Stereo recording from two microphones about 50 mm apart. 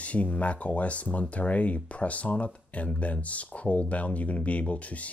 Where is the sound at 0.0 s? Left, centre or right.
Left.